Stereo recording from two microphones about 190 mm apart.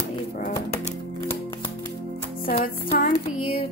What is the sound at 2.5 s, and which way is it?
Music, 50° left (ahead or behind).